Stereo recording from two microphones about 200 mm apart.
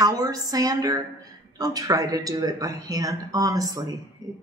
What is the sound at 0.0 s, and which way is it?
Speech, 20° right (ahead or behind).